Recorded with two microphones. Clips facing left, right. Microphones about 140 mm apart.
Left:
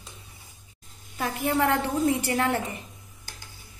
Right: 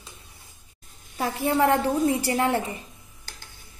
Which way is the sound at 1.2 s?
30° right (ahead or behind).